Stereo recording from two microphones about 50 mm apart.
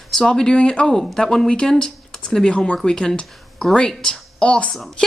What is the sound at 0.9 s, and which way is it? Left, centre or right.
Speech, centre.